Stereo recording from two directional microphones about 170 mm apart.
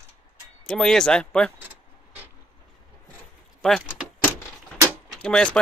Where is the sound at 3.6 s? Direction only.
Centre (ahead or behind).